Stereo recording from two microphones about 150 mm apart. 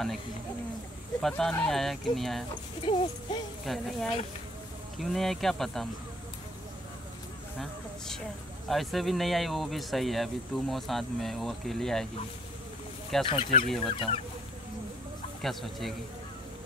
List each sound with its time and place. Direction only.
1.2 s speech: 5° left (ahead or behind)
2.8 s music: 35° left (ahead or behind)
3.6 s speech: centre (ahead or behind)
8.6 s speech: centre (ahead or behind)
13.2 s music: 35° left (ahead or behind)
15.4 s speech: centre (ahead or behind)